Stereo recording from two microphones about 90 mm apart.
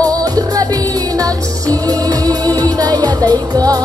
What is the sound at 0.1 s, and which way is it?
Music, 45° right (ahead or behind).